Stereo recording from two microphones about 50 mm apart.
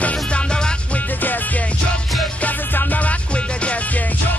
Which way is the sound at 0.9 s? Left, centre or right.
Left.